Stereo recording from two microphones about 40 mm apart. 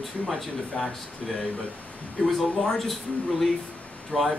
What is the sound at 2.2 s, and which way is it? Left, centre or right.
Speech, centre.